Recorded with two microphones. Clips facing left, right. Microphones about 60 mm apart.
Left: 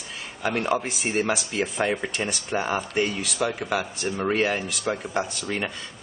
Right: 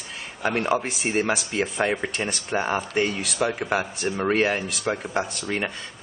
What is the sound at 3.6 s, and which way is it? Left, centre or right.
Speech, right.